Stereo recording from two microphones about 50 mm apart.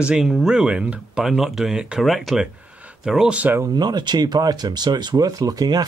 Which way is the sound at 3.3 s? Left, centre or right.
Right.